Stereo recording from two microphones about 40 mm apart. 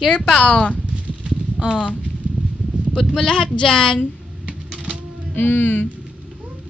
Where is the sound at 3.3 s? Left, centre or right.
Centre.